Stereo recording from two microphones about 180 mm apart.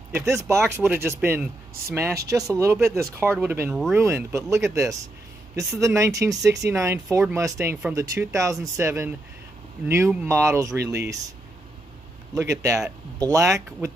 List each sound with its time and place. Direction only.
0.3 s speech: 15° right (ahead or behind)
12.4 s speech: 15° right (ahead or behind)